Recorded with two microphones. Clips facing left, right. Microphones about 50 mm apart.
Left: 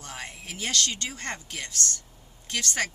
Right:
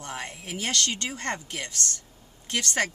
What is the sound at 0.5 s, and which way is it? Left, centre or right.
A woman's voice, centre.